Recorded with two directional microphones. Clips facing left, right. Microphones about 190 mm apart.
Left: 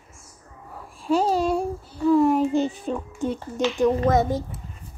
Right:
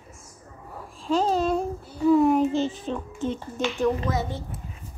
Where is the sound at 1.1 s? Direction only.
10° left (ahead or behind).